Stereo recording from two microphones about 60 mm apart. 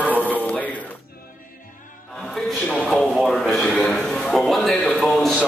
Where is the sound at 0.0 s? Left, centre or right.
Left.